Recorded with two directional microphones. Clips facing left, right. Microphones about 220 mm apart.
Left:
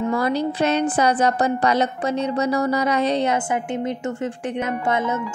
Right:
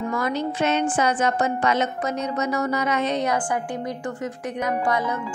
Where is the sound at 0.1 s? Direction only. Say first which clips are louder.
Left 4 dB; 35° left (ahead or behind).